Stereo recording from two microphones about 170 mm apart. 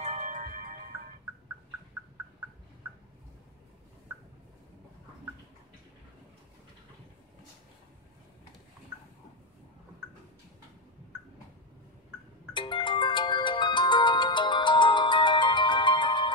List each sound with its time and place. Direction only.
0.0 s music: 45° right (ahead or behind)
12.5 s music: 30° left (ahead or behind)